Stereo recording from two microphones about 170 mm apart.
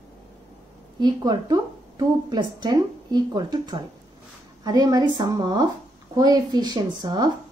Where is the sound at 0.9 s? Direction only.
25° right (ahead or behind).